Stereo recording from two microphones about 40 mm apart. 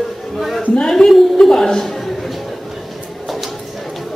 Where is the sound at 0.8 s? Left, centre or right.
Centre.